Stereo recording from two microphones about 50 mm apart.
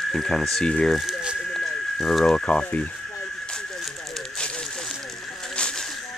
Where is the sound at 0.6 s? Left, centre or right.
Centre.